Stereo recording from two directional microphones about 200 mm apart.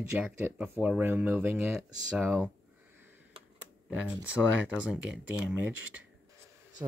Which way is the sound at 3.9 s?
5° right (ahead or behind).